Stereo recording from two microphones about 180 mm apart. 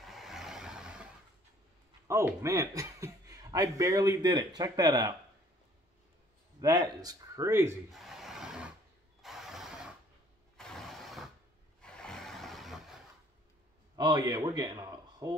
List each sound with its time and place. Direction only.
0.0 s vehicle: centre (ahead or behind)
2.0 s speech: 15° right (ahead or behind)
6.6 s speech: 20° right (ahead or behind)
7.9 s rub: centre (ahead or behind)
9.2 s mechanisms: centre (ahead or behind)
11.8 s vehicle: 5° left (ahead or behind)
13.9 s a man's voice: 20° right (ahead or behind)